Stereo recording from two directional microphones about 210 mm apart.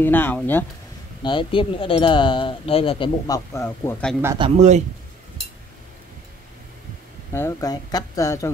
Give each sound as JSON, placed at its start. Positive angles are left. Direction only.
{"t": 0.0, "sound": "speech", "side_deg": 10}
{"t": 1.2, "sound": "speech", "side_deg": 25}
{"t": 4.4, "sound": "speech", "side_deg": -30}
{"t": 7.3, "sound": "speech", "side_deg": 15}